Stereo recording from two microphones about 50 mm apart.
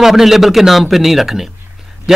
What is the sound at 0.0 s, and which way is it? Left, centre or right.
A man's voice, centre.